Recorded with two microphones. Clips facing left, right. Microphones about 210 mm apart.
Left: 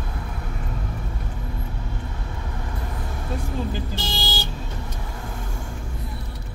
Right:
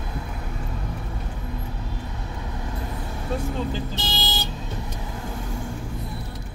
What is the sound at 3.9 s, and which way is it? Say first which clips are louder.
Vehicle: even; 20° right (ahead or behind).